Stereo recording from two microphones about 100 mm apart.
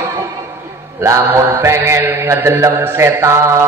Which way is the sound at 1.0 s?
30° right (ahead or behind).